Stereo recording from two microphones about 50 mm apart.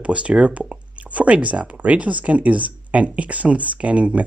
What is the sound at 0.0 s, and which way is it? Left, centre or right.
Speech, right.